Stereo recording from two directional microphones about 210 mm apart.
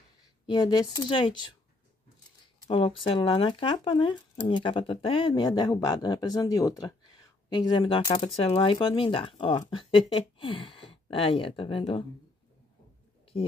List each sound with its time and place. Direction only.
0.5 s speech: 20° left (ahead or behind)
2.6 s speech: 25° left (ahead or behind)
8.1 s speech: 30° left (ahead or behind)